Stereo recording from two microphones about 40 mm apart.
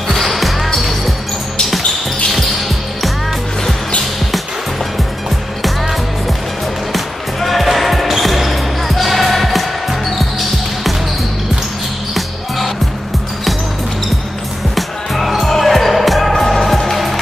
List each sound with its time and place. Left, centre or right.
0.1 s music: centre
6.9 s music: centre
7.7 s basketball bounce: centre
14.8 s music: centre
15.3 s basketball bounce: centre